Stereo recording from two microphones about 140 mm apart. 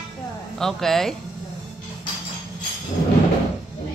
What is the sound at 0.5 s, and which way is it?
Speech, 5° left (ahead or behind).